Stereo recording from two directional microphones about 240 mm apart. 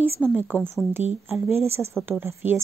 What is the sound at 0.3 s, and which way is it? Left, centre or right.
Speech, centre.